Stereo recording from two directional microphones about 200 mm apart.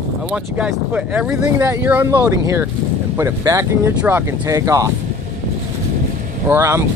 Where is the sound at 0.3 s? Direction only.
5° right (ahead or behind).